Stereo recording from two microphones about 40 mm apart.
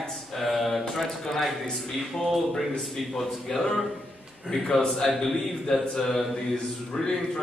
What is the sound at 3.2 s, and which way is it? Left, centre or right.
Speech, centre.